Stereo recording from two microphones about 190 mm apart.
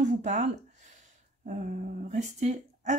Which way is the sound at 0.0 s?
40° right (ahead or behind).